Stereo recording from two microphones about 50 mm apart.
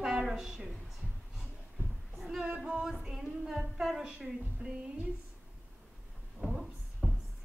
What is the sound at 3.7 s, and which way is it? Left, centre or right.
Speech, centre.